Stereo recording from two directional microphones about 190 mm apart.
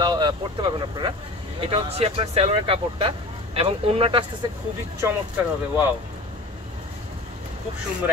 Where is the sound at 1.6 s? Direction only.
30° right (ahead or behind).